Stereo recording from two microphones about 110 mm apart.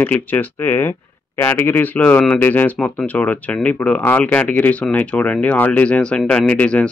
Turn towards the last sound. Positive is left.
turn(degrees=10)  # may be behind; listen again after turning